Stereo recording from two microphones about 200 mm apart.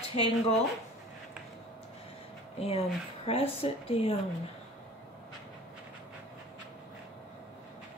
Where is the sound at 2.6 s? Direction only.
30° left (ahead or behind).